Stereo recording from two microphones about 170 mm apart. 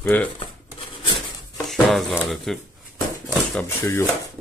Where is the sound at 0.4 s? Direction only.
30° left (ahead or behind).